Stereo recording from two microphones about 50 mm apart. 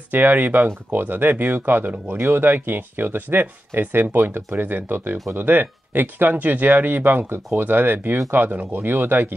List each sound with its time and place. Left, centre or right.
0.1 s speech: right